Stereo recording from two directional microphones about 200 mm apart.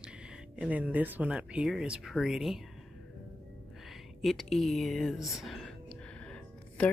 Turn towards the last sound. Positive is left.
turn(degrees=5)  # may be behind; listen again after turning